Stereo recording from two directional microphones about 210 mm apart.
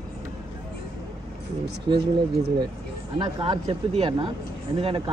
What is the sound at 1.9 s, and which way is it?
Speech, 20° right (ahead or behind).